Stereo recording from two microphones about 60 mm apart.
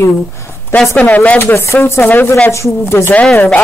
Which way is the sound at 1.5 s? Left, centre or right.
Left.